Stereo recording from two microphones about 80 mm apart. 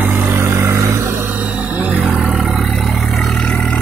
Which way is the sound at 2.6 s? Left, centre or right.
Centre.